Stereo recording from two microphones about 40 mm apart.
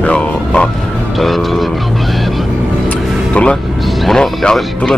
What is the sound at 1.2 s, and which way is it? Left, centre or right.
Speech, centre.